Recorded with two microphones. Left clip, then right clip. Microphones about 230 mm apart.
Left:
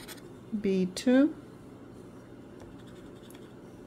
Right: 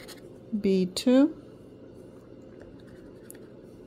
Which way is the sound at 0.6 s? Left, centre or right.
Right.